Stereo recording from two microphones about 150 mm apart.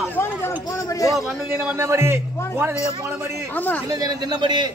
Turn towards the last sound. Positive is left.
turn(degrees=-30)  # may be behind; listen again after turning